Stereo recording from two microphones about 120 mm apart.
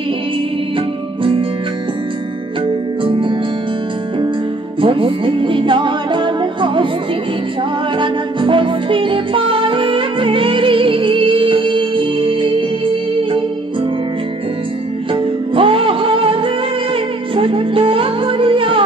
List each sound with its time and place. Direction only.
0.7 s music: 45° right (ahead or behind)
3.0 s music: 45° right (ahead or behind)
4.8 s music: 45° right (ahead or behind)
8.0 s music: 45° right (ahead or behind)
15.5 s music: 50° right (ahead or behind)